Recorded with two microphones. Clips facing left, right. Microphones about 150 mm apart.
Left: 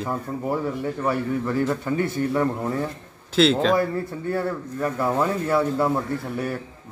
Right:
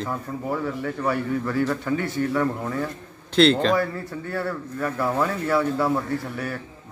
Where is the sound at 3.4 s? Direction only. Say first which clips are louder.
Right 1 dB; centre (ahead or behind).